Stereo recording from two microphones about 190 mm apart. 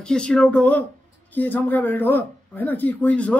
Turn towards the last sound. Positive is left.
turn(degrees=5)  # may be behind; listen again after turning